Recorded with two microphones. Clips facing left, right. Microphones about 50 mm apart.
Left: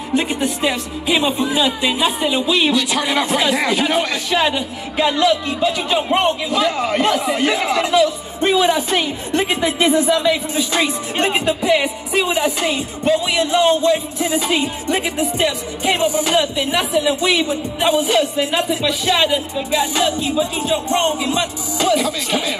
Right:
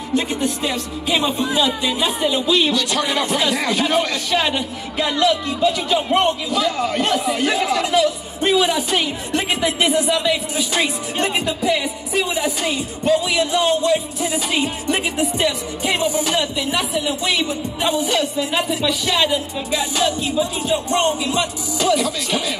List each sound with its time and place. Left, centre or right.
0.1 s a woman's voice: left